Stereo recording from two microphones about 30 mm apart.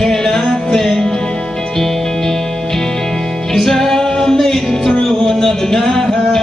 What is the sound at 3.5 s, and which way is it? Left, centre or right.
Music, centre.